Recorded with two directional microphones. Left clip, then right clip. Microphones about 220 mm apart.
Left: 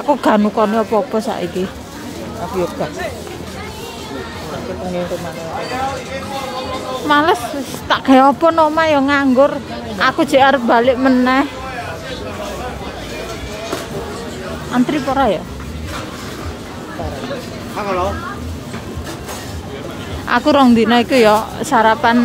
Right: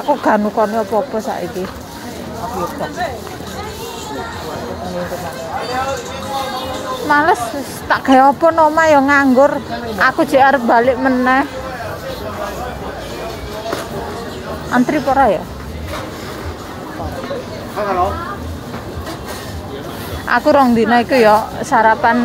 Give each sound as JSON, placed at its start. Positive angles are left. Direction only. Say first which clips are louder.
{"t": 0.2, "sound": "speech", "louder": "even", "side_deg": 20}
{"t": 7.1, "sound": "speech", "louder": "right 1 dB", "side_deg": 15}
{"t": 8.7, "sound": "speech", "louder": "right 3 dB", "side_deg": 0}
{"t": 14.7, "sound": "speech", "louder": "right 3 dB", "side_deg": 10}
{"t": 20.2, "sound": "speech", "louder": "right 1 dB", "side_deg": 15}